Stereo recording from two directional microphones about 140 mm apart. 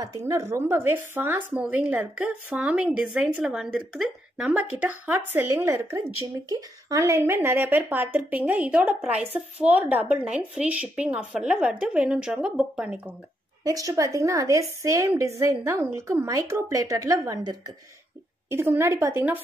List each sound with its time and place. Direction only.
0.0 s speech: 25° right (ahead or behind)
13.7 s a woman's voice: 25° right (ahead or behind)